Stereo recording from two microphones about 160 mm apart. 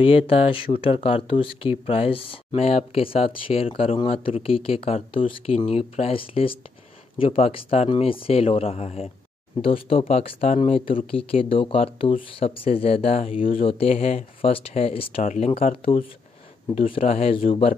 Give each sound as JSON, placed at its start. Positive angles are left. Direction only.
{"t": 0.0, "sound": "speech", "side_deg": 35}